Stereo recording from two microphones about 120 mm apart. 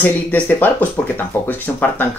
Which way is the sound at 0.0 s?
15° left (ahead or behind).